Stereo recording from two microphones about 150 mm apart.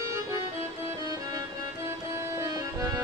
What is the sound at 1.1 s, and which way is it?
Music, 25° right (ahead or behind).